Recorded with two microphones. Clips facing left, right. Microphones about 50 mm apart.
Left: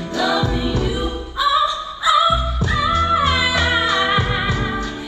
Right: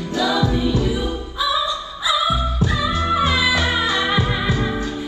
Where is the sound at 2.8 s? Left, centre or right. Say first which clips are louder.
Left 4 dB; left.